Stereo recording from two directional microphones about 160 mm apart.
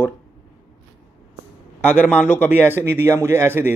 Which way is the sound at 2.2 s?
15° left (ahead or behind).